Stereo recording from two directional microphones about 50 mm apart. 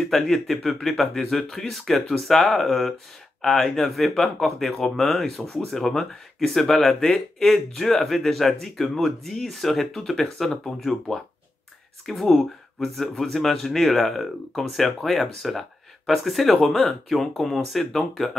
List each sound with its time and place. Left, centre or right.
0.0 s speech: centre